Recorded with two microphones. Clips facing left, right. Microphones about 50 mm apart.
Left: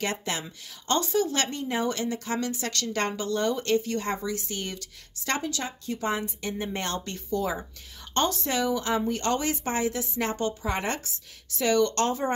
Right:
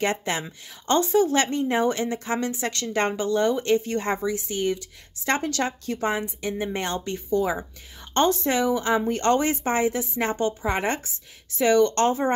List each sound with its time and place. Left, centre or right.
0.0 s a woman's voice: right
5.4 s a woman's voice: right
6.0 s a woman's voice: centre
8.1 s a woman's voice: right